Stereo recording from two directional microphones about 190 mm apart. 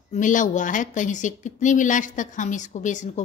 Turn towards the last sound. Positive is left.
turn(degrees=40)  # may be behind; listen again after turning